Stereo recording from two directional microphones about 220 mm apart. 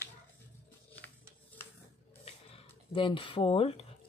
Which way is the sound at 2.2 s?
25° left (ahead or behind).